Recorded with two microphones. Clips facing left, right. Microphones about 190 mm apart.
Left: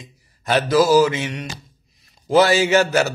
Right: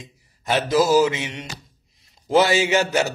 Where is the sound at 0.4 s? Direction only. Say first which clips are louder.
Left 3 dB; 20° right (ahead or behind).